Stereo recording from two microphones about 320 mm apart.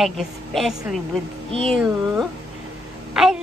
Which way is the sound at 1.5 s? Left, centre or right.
Centre.